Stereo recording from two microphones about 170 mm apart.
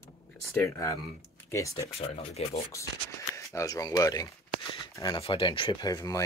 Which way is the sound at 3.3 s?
20° left (ahead or behind).